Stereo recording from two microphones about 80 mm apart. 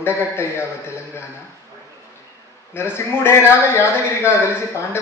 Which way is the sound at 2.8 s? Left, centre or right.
Left.